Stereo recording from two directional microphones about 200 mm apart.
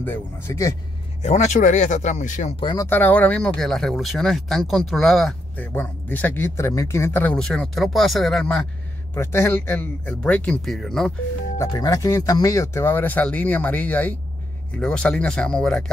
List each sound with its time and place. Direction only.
0.0 s speech: 10° left (ahead or behind)
1.2 s speech: 35° left (ahead or behind)
2.6 s speech: 20° left (ahead or behind); by 8.6 s centre (ahead or behind)
9.1 s speech: 10° left (ahead or behind)
11.5 s speech: 15° left (ahead or behind)